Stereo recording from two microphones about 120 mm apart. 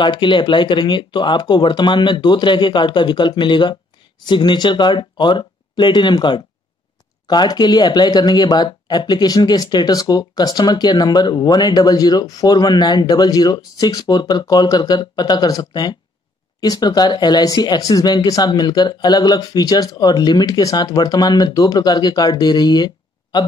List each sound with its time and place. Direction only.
0.0 s speech: 40° left (ahead or behind)